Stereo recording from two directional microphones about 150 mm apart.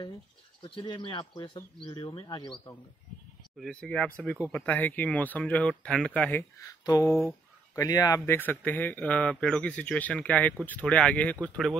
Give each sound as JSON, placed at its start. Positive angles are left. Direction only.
{"t": 0.6, "sound": "speech", "side_deg": 30}
{"t": 3.5, "sound": "speech", "side_deg": 5}
{"t": 6.6, "sound": "speech", "side_deg": 20}
{"t": 8.4, "sound": "speech", "side_deg": 10}